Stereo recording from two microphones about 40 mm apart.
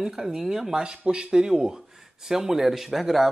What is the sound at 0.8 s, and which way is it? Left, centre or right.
Speech, right.